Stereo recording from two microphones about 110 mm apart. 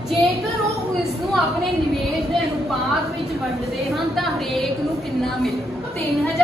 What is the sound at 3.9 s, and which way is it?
Speech, centre (ahead or behind).